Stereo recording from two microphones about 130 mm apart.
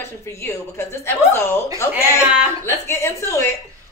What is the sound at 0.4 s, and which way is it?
A woman's voice, 20° left (ahead or behind).